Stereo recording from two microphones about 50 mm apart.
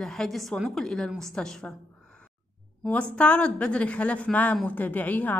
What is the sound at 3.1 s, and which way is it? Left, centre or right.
A woman's voice, left.